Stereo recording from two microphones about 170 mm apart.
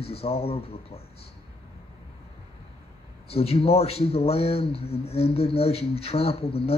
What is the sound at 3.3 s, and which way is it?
Speech, 35° left (ahead or behind).